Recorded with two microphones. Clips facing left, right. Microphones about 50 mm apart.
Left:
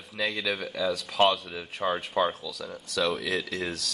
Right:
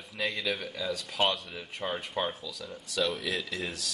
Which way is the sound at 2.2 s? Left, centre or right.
Left.